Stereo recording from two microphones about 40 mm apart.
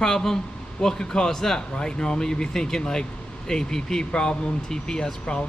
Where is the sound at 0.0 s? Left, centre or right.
Centre.